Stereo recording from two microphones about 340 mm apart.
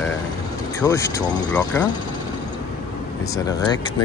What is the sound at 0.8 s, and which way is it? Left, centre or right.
A man's voice, centre.